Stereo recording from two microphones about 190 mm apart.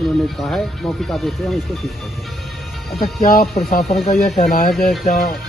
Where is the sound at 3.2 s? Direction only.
50° left (ahead or behind).